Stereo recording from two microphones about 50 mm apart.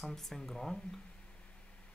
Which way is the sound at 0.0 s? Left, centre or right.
Centre.